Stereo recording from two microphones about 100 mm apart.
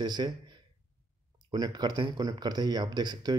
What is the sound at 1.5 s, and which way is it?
Speech, 45° right (ahead or behind).